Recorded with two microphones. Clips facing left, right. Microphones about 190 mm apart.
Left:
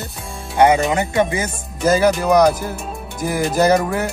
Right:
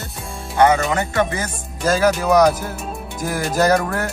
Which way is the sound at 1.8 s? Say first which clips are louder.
Left 2 dB; centre (ahead or behind).